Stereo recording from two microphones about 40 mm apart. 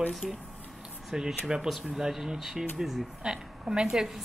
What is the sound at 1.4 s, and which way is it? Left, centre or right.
Speech, centre.